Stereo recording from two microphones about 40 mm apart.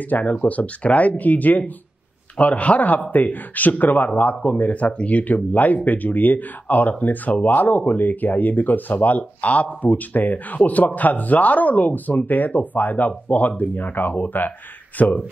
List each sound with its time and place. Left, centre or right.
0.0 s speech: left